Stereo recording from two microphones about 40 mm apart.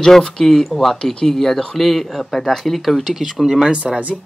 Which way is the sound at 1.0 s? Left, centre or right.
Centre.